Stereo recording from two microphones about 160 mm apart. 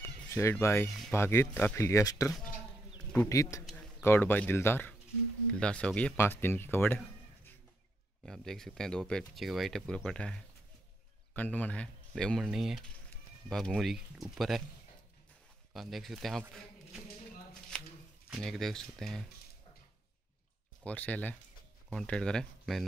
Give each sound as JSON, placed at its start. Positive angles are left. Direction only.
{"t": 0.3, "sound": "speech", "side_deg": 15}
{"t": 0.8, "sound": "speech", "side_deg": 0}
{"t": 1.1, "sound": "a man's voice", "side_deg": 15}
{"t": 8.3, "sound": "speech", "side_deg": 0}
{"t": 15.7, "sound": "speech", "side_deg": 0}
{"t": 17.7, "sound": "shuffling cards", "side_deg": 5}
{"t": 18.4, "sound": "speech", "side_deg": 0}
{"t": 20.8, "sound": "speech", "side_deg": 10}